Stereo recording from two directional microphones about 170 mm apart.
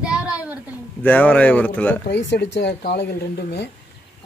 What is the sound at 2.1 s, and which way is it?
Speech, 90° left.